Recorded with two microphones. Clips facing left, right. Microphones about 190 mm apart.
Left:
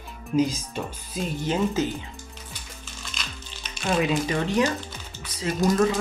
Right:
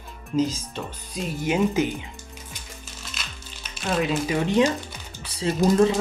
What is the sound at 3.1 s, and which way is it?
Music, 5° right (ahead or behind).